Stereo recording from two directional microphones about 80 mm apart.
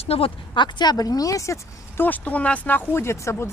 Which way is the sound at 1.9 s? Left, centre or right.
Left.